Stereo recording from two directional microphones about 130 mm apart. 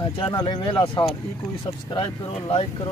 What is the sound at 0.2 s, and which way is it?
Speech, 35° left (ahead or behind).